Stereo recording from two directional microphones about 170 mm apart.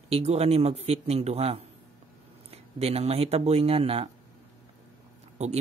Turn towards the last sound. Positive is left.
turn(degrees=-40)  # may be behind; listen again after turning